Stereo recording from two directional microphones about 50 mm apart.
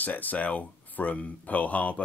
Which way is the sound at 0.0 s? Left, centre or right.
Left.